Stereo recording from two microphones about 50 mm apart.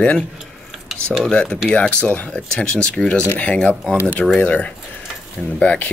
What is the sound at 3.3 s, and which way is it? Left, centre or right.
Speech, left.